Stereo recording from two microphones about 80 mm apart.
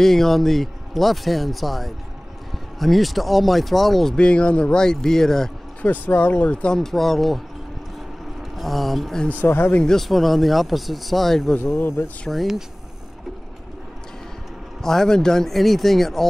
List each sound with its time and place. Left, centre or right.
0.0 s speech: centre
5.9 s speech: centre
9.4 s speech: left
9.8 s speech: centre
11.6 s speech: left
12.3 s speech: centre
14.8 s speech: centre